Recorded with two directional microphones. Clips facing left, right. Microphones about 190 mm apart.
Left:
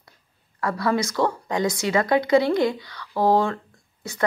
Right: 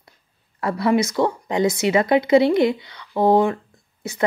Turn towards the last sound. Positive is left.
turn(degrees=-20)  # may be behind; listen again after turning